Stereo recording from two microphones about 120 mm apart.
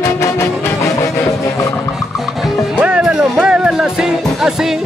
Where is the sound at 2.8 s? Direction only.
10° right (ahead or behind).